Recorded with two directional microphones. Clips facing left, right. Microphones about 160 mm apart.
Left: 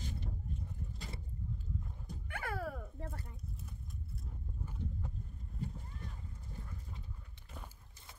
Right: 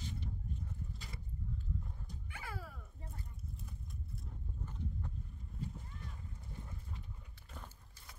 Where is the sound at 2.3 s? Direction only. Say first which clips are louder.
Left 9 dB; 60° left (ahead or behind).